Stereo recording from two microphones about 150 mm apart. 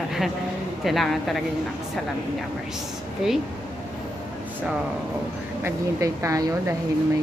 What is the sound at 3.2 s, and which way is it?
Speech, centre (ahead or behind).